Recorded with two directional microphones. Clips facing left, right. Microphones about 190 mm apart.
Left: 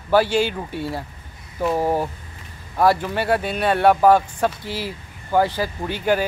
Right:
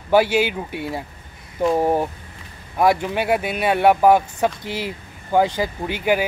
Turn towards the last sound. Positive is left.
turn(degrees=-10)  # may be behind; listen again after turning